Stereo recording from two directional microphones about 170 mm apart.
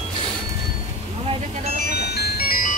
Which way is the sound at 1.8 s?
70° left (ahead or behind).